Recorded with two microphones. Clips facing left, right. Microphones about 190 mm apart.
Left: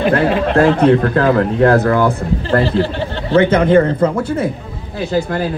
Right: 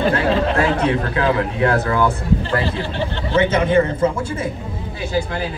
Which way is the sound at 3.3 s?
60° left (ahead or behind).